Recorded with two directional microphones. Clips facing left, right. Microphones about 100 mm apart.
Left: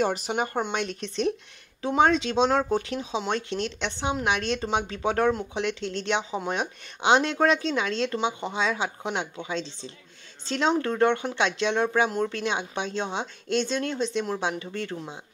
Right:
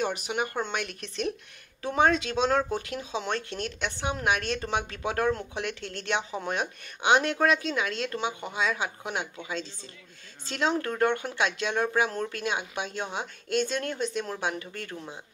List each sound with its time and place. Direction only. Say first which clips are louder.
0.0 s speech: left 4 dB; 35° left (ahead or behind)
0.6 s speech: left 4 dB; 25° left (ahead or behind)
5.3 s speech: left 3 dB; 15° left (ahead or behind)